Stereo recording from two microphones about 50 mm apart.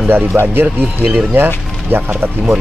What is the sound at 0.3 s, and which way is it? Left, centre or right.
Speech, right.